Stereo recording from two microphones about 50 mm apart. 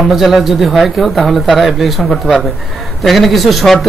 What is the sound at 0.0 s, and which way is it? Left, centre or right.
Speech, centre.